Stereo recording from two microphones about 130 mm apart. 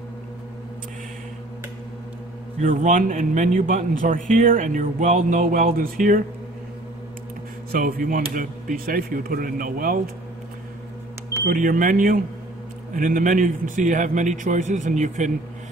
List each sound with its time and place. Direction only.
2.6 s a man's voice: 85° right
7.8 s a man's voice: 90° right
11.5 s a man's voice: 90° right; by 15.3 s 70° right (ahead or behind)